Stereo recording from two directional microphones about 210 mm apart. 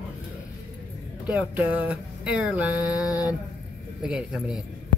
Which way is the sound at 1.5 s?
10° right (ahead or behind).